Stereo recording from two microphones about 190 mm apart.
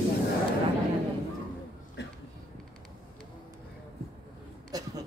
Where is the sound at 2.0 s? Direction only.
65° left (ahead or behind).